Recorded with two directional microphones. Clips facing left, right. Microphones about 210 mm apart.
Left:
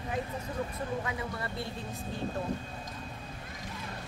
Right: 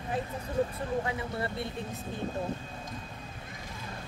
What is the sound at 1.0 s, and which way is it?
Speech, 25° right (ahead or behind).